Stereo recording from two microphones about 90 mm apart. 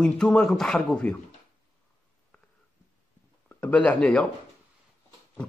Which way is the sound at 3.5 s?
20° left (ahead or behind).